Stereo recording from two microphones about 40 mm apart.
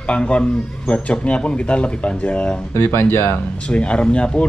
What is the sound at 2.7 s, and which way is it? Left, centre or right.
Speech, left.